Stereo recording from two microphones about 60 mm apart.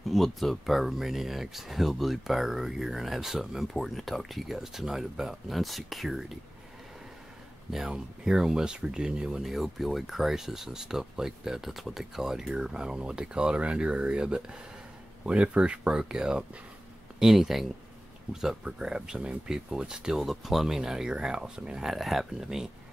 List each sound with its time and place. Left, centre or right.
0.0 s speech: centre
7.7 s speech: centre
21.9 s speech: centre